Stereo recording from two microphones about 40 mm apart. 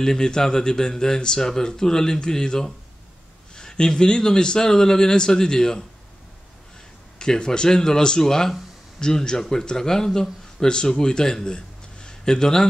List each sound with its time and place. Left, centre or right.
0.0 s speech: centre
7.2 s a man's voice: centre